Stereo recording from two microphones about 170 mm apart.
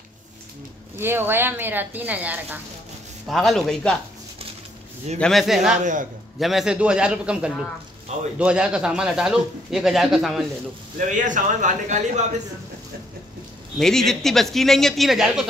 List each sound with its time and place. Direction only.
0.9 s speech: 15° right (ahead or behind)
5.2 s speech: centre (ahead or behind)
11.0 s speech: 50° right (ahead or behind)
13.7 s speech: 5° left (ahead or behind)